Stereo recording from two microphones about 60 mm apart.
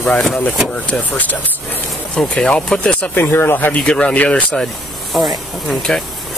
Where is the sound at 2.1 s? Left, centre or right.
Centre.